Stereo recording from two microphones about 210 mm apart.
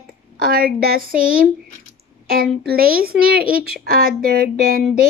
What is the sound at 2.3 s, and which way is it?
A child's voice, 45° right (ahead or behind).